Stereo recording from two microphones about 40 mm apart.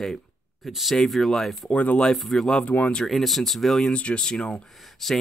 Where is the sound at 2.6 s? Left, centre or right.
Left.